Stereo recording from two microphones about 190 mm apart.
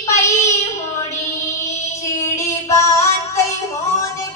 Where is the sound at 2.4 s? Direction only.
15° left (ahead or behind).